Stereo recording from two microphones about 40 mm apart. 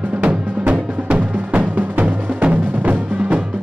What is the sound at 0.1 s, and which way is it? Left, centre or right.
Music, right.